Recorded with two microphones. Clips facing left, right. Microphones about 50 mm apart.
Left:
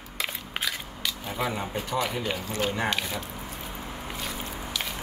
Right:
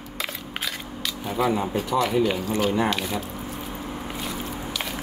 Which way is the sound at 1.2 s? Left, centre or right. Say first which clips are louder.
Right 8 dB; centre.